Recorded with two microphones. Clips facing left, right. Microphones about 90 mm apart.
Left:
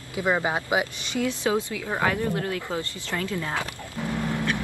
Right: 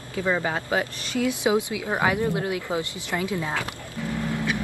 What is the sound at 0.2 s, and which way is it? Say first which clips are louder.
Speech: left 1 dB; 15° left (ahead or behind).